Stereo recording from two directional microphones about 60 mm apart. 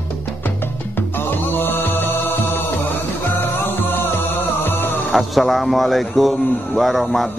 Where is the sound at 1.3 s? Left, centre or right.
Left.